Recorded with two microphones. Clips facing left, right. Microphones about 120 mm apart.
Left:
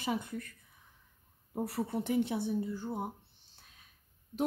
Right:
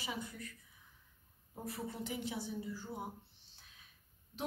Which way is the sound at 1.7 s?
65° left (ahead or behind).